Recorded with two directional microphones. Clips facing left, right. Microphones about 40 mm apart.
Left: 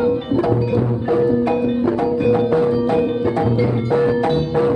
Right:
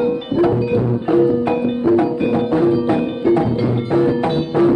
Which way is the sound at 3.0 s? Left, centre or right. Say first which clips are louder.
Left 1 dB; centre.